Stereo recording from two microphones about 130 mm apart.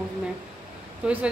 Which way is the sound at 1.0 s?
5° right (ahead or behind).